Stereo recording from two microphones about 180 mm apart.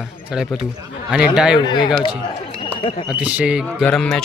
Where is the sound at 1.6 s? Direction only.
25° left (ahead or behind).